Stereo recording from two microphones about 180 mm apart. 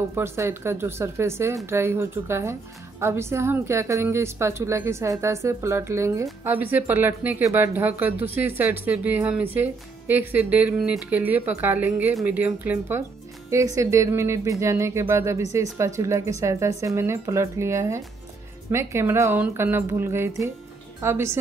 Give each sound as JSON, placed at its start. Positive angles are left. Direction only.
{"t": 0.1, "sound": "speech", "side_deg": -15}